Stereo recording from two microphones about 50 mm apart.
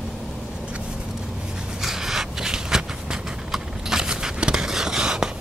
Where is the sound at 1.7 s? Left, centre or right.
Centre.